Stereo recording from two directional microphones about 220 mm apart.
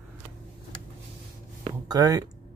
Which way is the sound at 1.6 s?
15° right (ahead or behind).